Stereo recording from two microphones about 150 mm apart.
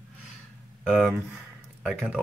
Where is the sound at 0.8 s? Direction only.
5° right (ahead or behind).